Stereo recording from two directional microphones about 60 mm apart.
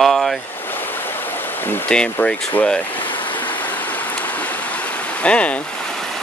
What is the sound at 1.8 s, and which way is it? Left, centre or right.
Speech, centre.